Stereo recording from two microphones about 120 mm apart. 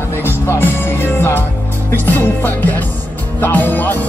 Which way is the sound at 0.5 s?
20° left (ahead or behind).